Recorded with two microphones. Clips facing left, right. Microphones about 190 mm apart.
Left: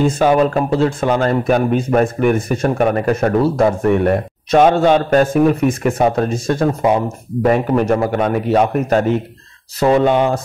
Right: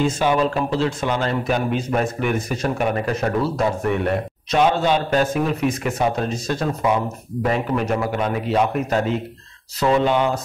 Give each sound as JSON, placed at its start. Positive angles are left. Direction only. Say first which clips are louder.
{"t": 0.0, "sound": "speech", "louder": "left 6 dB", "side_deg": 50}